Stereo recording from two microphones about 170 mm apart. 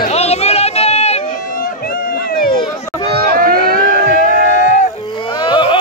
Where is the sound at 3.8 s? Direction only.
50° left (ahead or behind).